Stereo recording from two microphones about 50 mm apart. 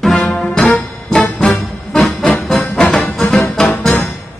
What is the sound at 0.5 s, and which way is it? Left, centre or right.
Music, centre.